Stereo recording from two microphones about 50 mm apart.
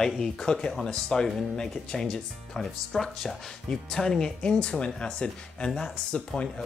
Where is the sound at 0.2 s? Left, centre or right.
Centre.